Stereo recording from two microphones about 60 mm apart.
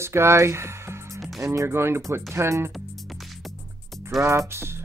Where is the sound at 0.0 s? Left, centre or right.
Right.